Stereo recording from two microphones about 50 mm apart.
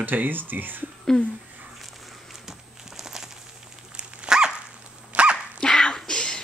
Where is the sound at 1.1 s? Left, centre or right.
Left.